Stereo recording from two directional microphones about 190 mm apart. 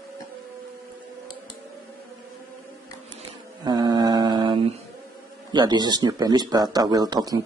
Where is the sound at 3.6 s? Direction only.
20° right (ahead or behind).